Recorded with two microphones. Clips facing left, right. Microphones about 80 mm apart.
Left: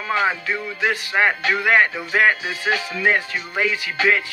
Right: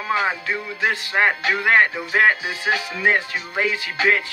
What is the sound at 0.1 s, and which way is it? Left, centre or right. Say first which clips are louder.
Speech: left 1 dB; right.